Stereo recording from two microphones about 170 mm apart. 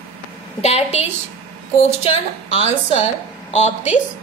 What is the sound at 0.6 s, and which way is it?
Speech, 40° left (ahead or behind).